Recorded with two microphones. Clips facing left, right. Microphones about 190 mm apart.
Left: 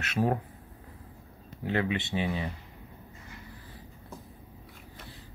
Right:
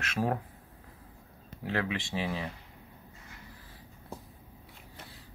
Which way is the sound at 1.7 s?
Centre (ahead or behind).